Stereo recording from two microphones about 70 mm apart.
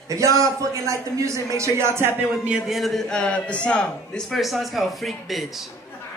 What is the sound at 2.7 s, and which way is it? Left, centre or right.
A man's voice, centre.